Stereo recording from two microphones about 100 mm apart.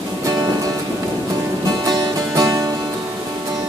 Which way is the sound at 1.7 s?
40° right (ahead or behind).